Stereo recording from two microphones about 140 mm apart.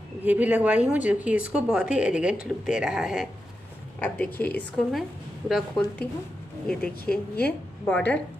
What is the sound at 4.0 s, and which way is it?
Speech, 15° left (ahead or behind).